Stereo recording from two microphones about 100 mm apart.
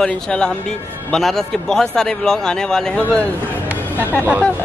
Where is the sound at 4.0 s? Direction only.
20° left (ahead or behind).